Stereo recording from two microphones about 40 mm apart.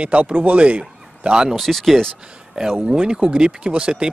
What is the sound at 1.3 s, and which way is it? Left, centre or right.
Speech, centre.